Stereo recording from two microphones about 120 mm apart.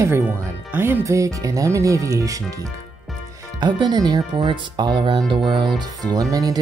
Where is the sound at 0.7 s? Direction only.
20° right (ahead or behind).